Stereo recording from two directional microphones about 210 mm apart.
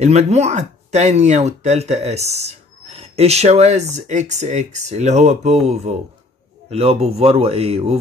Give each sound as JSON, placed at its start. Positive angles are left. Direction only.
{"t": 0.0, "sound": "speech", "side_deg": -30}